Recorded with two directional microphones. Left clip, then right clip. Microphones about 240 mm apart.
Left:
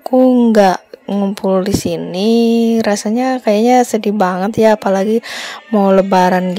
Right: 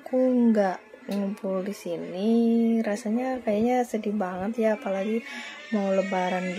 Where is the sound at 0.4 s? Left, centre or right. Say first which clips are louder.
Left 14 dB; left.